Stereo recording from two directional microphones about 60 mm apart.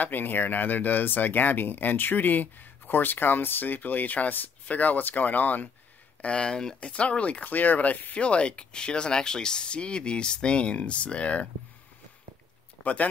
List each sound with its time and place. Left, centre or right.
0.0 s speech: left
6.2 s speech: centre
12.8 s speech: left